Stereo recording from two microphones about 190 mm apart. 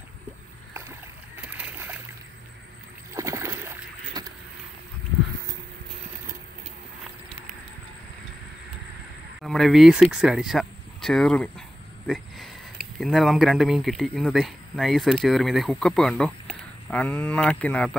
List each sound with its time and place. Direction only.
0.7 s boat: 10° right (ahead or behind)
3.2 s boat: 15° right (ahead or behind)
9.4 s speech: centre (ahead or behind)
13.0 s speech: centre (ahead or behind)